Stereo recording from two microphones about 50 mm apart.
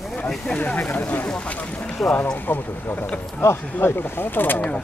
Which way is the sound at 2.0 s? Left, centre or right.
Centre.